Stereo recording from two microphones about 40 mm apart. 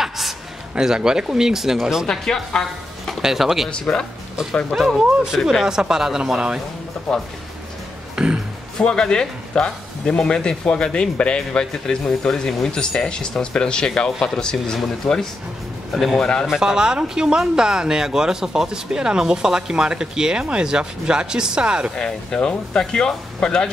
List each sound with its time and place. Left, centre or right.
0.7 s speech: centre
2.0 s speech: centre
3.2 s speech: centre
4.8 s speech: centre
8.2 s speech: right
8.7 s speech: centre
15.0 s speech: centre
16.4 s speech: centre
21.9 s speech: centre